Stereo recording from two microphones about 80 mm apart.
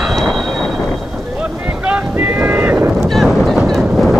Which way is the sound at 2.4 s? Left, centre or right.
Right.